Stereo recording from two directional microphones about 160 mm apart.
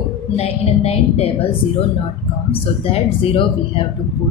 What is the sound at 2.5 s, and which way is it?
Speech, 35° left (ahead or behind).